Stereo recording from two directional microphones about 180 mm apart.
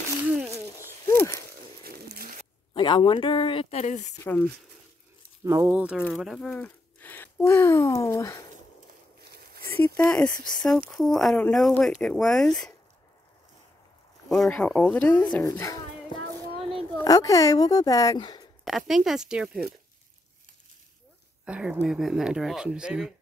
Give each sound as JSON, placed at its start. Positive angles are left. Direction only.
{"t": 1.0, "sound": "wild animals", "side_deg": 15}
{"t": 1.3, "sound": "zipper", "side_deg": -60}
{"t": 2.7, "sound": "a woman's voice", "side_deg": 25}
{"t": 3.8, "sound": "speech", "side_deg": 45}
{"t": 4.2, "sound": "speech", "side_deg": 10}
{"t": 5.4, "sound": "speech", "side_deg": -15}
{"t": 9.2, "sound": "a sound", "side_deg": -60}
{"t": 9.7, "sound": "speech", "side_deg": 10}
{"t": 14.3, "sound": "speech", "side_deg": 5}
{"t": 15.4, "sound": "a sound", "side_deg": 20}
{"t": 17.0, "sound": "a woman's voice", "side_deg": 20}
{"t": 18.6, "sound": "speech", "side_deg": 0}
{"t": 21.5, "sound": "speech", "side_deg": -5}